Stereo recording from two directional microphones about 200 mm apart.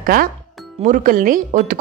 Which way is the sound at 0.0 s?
45° right (ahead or behind).